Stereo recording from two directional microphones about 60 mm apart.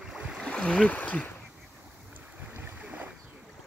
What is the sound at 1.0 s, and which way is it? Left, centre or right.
Speech, left.